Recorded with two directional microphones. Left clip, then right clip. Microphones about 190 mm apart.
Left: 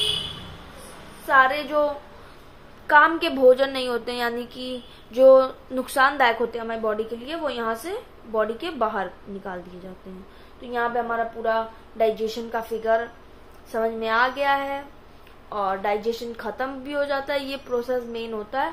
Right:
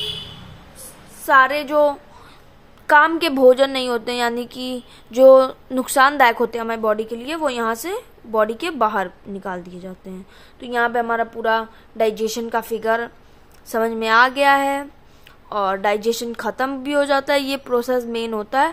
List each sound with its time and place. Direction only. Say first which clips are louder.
1.2 s a woman's voice: right 4 dB; 45° right (ahead or behind)
10.6 s a woman's voice: right 5 dB; 55° right (ahead or behind)